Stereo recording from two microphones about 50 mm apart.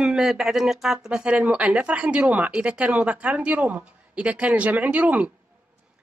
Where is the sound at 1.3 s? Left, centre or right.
Right.